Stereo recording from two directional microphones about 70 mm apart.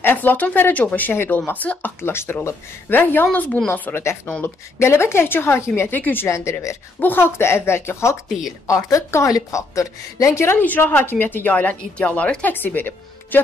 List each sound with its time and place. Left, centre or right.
0.0 s a woman's voice: left
5.9 s speech: left
6.2 s a woman's voice: left
7.0 s a woman's voice: left
8.3 s speech: centre
8.6 s a woman's voice: left
10.6 s speech: left